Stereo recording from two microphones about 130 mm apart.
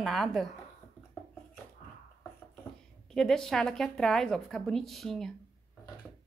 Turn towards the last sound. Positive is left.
turn(degrees=0)  # may be behind; listen again after turning